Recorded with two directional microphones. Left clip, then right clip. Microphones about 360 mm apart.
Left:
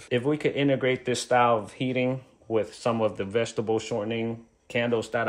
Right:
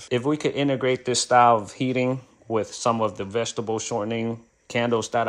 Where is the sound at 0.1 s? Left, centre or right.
Centre.